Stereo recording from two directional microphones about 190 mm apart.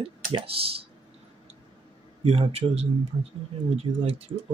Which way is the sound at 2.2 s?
30° right (ahead or behind).